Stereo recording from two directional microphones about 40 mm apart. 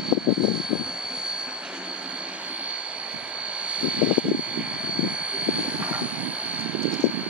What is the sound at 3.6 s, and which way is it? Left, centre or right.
Vehicle, right.